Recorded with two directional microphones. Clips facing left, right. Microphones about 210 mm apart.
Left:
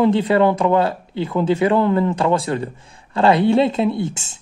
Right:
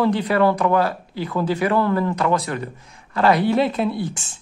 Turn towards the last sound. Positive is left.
turn(degrees=25)  # may be behind; listen again after turning